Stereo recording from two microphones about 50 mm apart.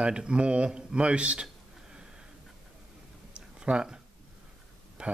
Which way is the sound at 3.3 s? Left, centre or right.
Right.